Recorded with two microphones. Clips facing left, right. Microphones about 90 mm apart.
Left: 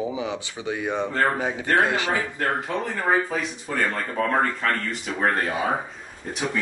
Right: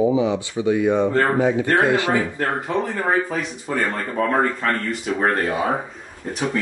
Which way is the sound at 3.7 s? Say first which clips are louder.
Right 2 dB; 10° right (ahead or behind).